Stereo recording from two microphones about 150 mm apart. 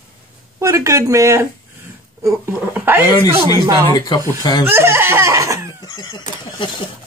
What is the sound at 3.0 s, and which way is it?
Speech, 25° left (ahead or behind).